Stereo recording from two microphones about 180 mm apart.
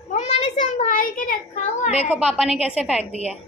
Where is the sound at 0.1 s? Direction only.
40° left (ahead or behind).